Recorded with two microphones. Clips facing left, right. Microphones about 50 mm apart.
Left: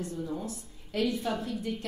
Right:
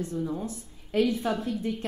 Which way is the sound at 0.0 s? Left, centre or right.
Right.